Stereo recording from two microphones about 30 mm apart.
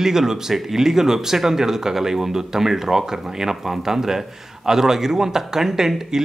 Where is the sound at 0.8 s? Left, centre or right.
Centre.